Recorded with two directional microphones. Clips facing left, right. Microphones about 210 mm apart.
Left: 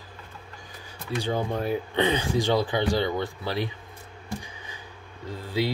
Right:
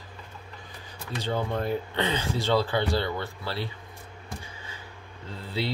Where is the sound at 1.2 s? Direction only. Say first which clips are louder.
Left 1 dB; 10° left (ahead or behind).